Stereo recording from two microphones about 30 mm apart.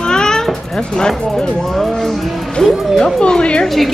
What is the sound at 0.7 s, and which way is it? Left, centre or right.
Music, left.